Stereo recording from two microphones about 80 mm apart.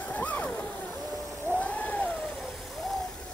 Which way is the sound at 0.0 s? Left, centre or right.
Left.